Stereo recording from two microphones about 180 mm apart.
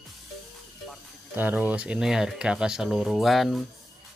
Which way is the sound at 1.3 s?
10° right (ahead or behind).